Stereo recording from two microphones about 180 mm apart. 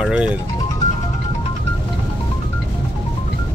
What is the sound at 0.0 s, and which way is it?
Speech, 5° right (ahead or behind).